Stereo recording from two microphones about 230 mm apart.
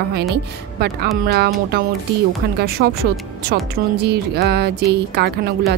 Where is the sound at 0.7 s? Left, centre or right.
Right.